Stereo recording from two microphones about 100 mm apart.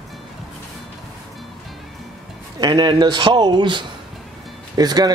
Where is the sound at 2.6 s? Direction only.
45° right (ahead or behind).